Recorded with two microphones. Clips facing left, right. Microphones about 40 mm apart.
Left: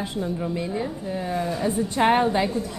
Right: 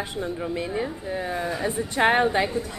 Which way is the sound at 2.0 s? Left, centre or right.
Centre.